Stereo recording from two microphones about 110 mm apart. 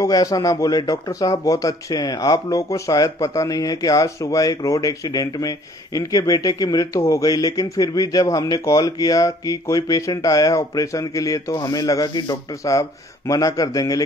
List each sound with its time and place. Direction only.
0.0 s a man's voice: 30° left (ahead or behind)